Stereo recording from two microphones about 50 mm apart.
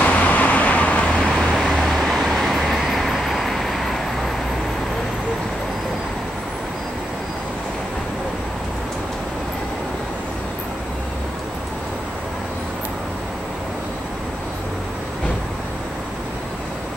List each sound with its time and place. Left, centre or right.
0.0 s vehicle: left
1.3 s vehicle: centre